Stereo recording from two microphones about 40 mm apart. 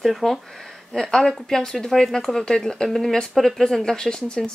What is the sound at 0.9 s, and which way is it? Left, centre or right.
Speech, centre.